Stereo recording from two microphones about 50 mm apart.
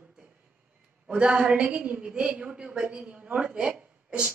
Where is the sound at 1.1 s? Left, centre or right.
Centre.